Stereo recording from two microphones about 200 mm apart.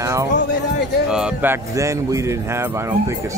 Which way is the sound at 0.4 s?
55° left (ahead or behind).